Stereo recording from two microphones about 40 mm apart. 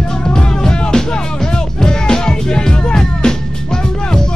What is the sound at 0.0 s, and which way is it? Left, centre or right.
Music, centre.